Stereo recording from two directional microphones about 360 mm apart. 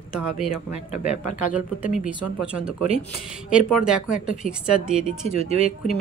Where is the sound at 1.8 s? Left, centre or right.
Centre.